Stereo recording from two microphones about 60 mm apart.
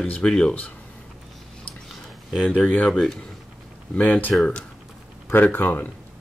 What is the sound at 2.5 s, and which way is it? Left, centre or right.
Speech, left.